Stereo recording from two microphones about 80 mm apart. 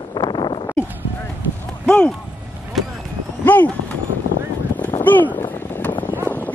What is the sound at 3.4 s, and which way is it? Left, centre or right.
Vehicle, centre.